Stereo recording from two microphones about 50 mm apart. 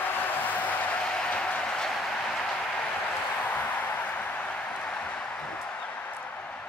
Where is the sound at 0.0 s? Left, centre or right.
Left.